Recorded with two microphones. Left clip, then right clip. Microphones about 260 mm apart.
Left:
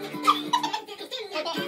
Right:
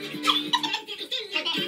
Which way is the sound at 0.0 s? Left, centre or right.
Left.